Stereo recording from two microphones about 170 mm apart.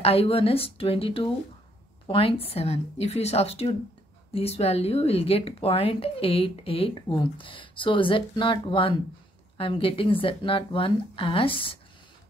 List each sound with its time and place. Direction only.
0.0 s speech: 35° left (ahead or behind)